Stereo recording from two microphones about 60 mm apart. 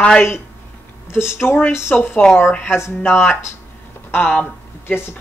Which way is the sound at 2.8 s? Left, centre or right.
Left.